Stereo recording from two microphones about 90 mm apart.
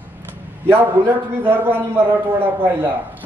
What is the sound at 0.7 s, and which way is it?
A man's voice, 25° right (ahead or behind).